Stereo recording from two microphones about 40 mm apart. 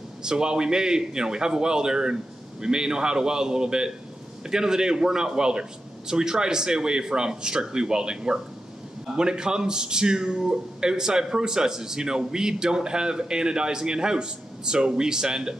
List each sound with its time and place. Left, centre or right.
0.2 s a man's voice: centre